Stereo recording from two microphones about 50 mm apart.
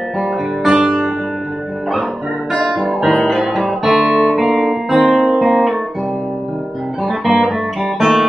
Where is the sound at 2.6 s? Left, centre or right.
Centre.